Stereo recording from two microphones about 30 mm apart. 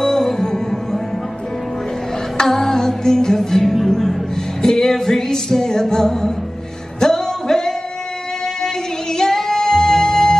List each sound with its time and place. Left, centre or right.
0.0 s music: centre
2.4 s music: centre